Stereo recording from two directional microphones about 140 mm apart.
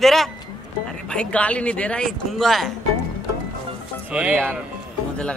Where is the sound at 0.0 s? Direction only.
Centre (ahead or behind).